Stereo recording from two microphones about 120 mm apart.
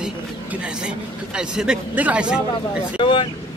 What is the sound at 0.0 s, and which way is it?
A man's voice, 10° right (ahead or behind).